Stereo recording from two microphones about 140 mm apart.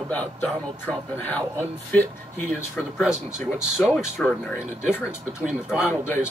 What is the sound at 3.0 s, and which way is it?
Speech, 5° right (ahead or behind).